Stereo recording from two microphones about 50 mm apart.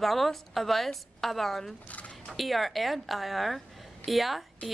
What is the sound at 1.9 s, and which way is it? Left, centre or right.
Speech, left.